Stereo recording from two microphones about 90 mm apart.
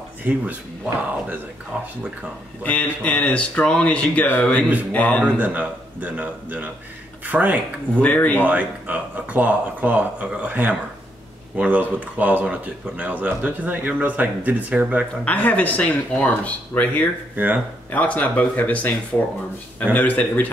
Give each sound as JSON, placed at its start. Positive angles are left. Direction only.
{"t": 0.2, "sound": "speech", "side_deg": -15}
{"t": 2.6, "sound": "speech", "side_deg": 15}
{"t": 5.2, "sound": "speech", "side_deg": -15}
{"t": 7.9, "sound": "speech", "side_deg": 15}
{"t": 8.4, "sound": "speech", "side_deg": -15}
{"t": 15.2, "sound": "speech", "side_deg": 15}